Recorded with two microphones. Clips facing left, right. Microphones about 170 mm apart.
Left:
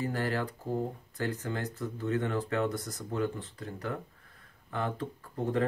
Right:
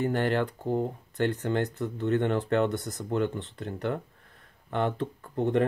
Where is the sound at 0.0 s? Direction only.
65° right (ahead or behind).